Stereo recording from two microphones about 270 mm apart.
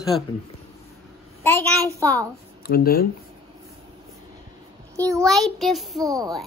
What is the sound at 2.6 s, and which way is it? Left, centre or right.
Speech, left.